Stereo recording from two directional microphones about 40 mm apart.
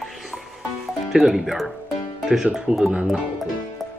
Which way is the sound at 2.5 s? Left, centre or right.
Centre.